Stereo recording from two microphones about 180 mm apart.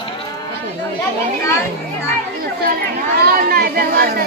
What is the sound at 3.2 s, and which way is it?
Chatter, 55° right (ahead or behind).